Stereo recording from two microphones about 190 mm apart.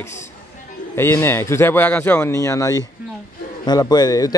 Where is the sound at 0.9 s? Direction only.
10° left (ahead or behind).